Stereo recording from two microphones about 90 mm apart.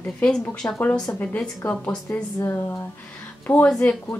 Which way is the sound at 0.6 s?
30° left (ahead or behind).